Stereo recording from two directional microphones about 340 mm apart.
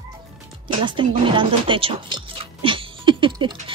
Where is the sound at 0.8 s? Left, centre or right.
Centre.